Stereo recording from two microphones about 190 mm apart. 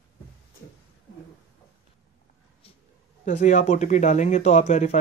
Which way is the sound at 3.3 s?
40° left (ahead or behind).